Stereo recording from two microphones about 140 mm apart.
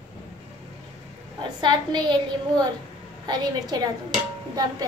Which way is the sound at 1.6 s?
30° right (ahead or behind).